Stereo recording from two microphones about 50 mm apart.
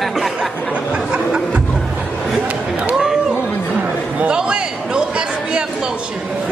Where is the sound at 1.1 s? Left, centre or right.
Right.